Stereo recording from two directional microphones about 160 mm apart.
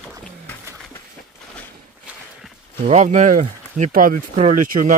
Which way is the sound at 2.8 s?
50° right (ahead or behind).